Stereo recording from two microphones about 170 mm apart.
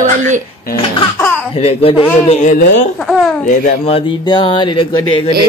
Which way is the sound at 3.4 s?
50° left (ahead or behind).